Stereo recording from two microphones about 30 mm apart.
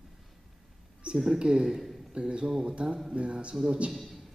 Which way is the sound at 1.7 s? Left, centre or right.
Centre.